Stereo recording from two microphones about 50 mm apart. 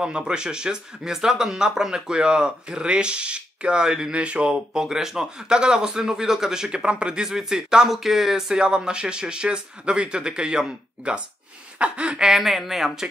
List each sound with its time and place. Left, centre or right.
0.0 s speech: centre
7.2 s speech: centre
12.3 s a woman's voice: centre